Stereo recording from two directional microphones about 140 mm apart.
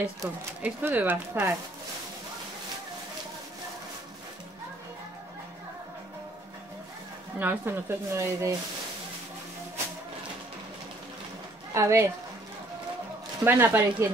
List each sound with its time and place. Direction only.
0.2 s speech: 15° right (ahead or behind)
7.3 s speech: 15° right (ahead or behind)
11.7 s speech: 20° right (ahead or behind)
13.4 s speech: 15° right (ahead or behind)